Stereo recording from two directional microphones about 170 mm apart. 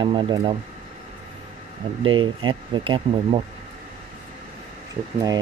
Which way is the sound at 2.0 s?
30° right (ahead or behind).